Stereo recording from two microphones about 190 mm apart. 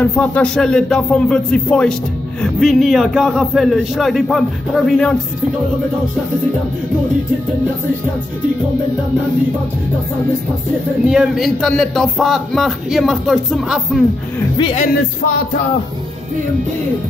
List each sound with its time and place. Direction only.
0.0 s speech: 5° left (ahead or behind)
11.1 s speech: centre (ahead or behind)
14.6 s speech: 30° left (ahead or behind)